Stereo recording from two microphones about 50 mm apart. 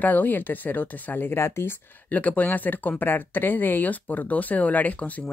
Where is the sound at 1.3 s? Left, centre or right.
Left.